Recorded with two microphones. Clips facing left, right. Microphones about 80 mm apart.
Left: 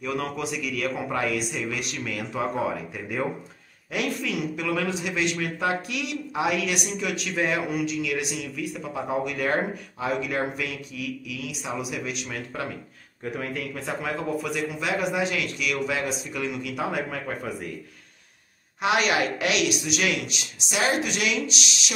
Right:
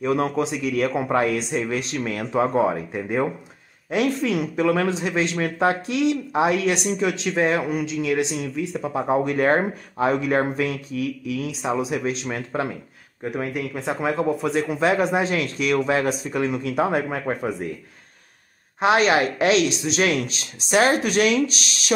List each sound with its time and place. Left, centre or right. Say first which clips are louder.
0.0 s speech: right 7 dB; right
18.8 s speech: right 5 dB; right